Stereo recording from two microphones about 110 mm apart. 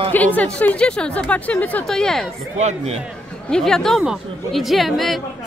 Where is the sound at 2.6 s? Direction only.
90° right.